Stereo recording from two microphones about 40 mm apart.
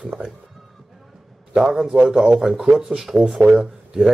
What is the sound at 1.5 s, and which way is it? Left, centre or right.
Speech, centre.